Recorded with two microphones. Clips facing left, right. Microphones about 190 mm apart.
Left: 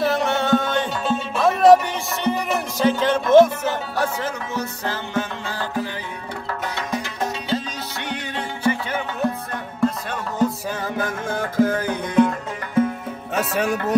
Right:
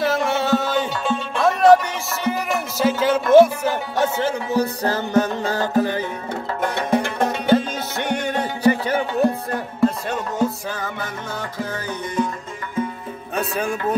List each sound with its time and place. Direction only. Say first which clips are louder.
0.0 s music: even; centre (ahead or behind)
4.0 s music: right 6 dB; 30° right (ahead or behind)
6.6 s music: right 9 dB; 55° right (ahead or behind); by 9.9 s 35° right (ahead or behind)
11.0 s music: left 5 dB; 50° left (ahead or behind)
13.3 s music: left 2 dB; 75° left (ahead or behind)